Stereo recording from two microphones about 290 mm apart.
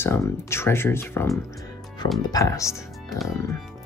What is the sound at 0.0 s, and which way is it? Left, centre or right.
Speech, centre.